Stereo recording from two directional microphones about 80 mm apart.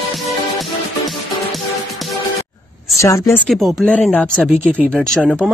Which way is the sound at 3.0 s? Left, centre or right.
Left.